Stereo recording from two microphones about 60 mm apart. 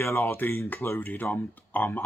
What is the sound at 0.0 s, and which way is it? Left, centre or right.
Speech, left.